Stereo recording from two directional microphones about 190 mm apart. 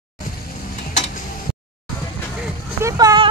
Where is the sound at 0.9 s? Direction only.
40° left (ahead or behind).